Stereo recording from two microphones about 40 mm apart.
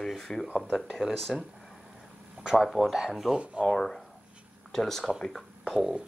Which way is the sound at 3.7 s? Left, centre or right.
Centre.